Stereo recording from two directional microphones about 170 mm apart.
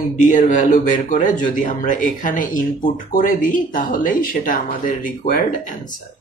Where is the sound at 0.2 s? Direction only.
50° left (ahead or behind).